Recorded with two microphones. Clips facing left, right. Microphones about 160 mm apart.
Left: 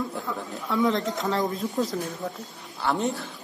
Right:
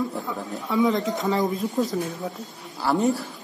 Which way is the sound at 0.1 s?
Centre (ahead or behind).